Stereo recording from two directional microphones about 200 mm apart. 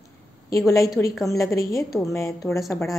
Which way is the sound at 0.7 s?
15° left (ahead or behind).